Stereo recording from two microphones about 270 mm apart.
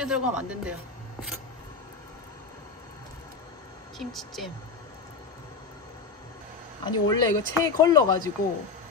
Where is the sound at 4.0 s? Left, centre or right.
Centre.